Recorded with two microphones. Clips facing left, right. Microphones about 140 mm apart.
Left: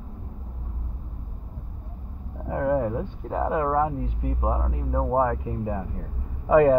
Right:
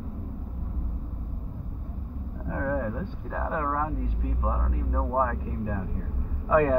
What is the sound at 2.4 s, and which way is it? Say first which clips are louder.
Speech: left 5 dB; 20° left (ahead or behind).